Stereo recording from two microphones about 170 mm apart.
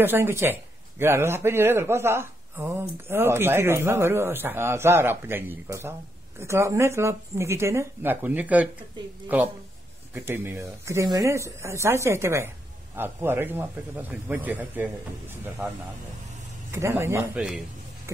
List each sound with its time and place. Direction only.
0.0 s speech: 15° right (ahead or behind)
10.1 s speech: 15° right (ahead or behind)